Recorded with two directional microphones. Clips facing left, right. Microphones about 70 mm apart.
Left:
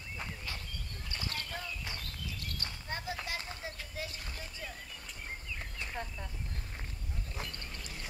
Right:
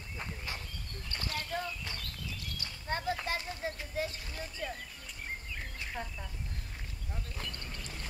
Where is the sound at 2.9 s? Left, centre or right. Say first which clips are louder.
Right 6 dB; right.